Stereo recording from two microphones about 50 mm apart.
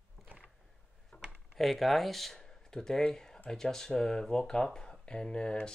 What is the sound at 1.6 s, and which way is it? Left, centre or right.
Speech, centre.